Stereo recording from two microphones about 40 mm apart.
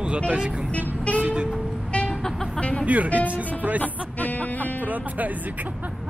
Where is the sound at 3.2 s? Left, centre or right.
Right.